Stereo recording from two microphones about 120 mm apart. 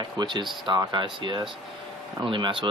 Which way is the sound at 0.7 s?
35° right (ahead or behind).